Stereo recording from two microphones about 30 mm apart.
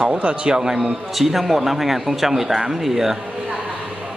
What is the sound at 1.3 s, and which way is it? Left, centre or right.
A man's voice, centre.